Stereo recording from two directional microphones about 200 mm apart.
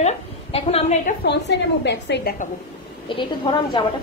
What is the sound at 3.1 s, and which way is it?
Speech, 25° left (ahead or behind).